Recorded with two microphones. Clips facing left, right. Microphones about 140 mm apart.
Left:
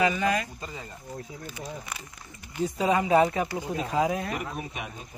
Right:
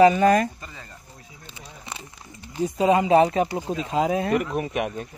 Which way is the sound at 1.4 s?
25° right (ahead or behind).